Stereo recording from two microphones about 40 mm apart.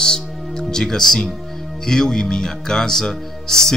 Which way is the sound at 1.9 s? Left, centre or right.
Centre.